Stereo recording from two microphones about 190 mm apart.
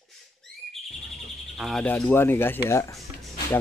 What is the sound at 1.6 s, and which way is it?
Speech, 5° left (ahead or behind).